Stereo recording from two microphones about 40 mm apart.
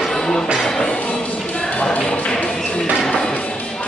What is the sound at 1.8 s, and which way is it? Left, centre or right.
Tap, left.